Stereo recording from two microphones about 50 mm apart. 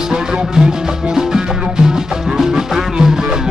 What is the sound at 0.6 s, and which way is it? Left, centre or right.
Music, centre.